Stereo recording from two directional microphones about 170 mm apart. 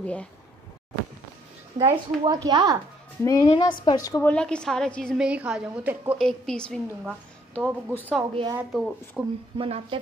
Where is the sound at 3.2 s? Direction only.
20° left (ahead or behind).